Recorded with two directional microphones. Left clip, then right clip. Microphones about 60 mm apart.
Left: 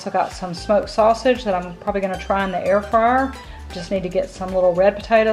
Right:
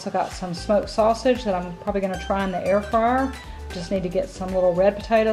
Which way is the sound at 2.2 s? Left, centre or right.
Left.